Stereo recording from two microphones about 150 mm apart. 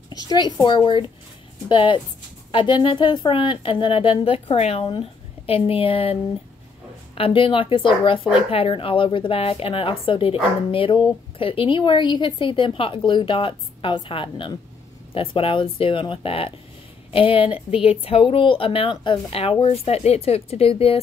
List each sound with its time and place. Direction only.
0.1 s a child's voice: 25° left (ahead or behind)
7.2 s speech: 35° left (ahead or behind)